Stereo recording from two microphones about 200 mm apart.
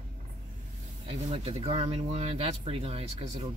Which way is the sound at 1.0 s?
30° right (ahead or behind).